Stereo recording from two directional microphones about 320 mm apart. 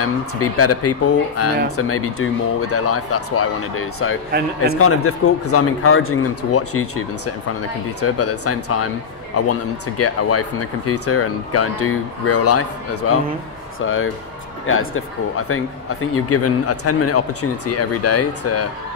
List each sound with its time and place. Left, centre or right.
0.0 s speech: left